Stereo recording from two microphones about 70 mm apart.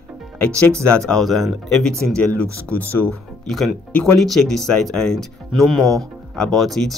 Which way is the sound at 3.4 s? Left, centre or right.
Centre.